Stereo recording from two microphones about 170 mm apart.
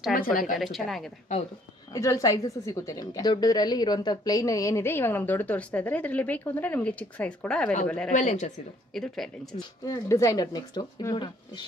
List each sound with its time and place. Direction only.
0.1 s a woman's voice: 55° left (ahead or behind)
0.6 s speech: centre (ahead or behind)
2.0 s a woman's voice: 20° left (ahead or behind)
8.1 s speech: 45° left (ahead or behind)
8.9 s speech: centre (ahead or behind)
9.8 s speech: 20° left (ahead or behind)